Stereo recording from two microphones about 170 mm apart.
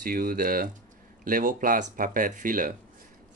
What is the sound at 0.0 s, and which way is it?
Speech, 55° right (ahead or behind).